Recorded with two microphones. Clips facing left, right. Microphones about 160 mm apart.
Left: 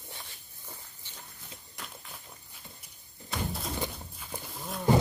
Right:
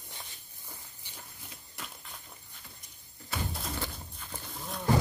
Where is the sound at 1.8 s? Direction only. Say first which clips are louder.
Even; centre (ahead or behind).